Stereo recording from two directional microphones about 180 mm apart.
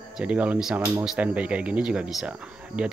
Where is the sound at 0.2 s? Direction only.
5° right (ahead or behind).